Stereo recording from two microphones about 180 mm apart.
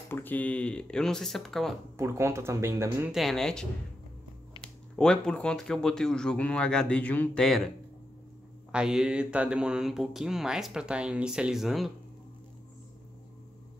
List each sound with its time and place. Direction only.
0.1 s speech: 10° left (ahead or behind)
2.0 s speech: 15° right (ahead or behind)
3.1 s speech: centre (ahead or behind)
8.7 s speech: 5° right (ahead or behind)